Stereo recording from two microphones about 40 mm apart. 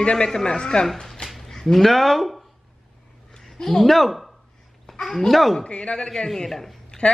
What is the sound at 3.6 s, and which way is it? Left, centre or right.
Speech, centre.